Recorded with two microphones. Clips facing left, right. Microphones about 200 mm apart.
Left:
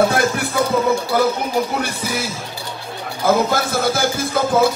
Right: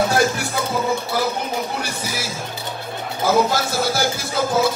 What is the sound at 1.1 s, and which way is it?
Speech, 55° left (ahead or behind).